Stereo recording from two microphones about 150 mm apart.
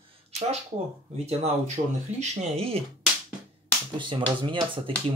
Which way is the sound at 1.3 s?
45° right (ahead or behind).